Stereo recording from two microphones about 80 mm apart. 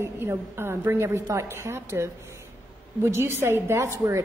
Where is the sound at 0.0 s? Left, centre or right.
Right.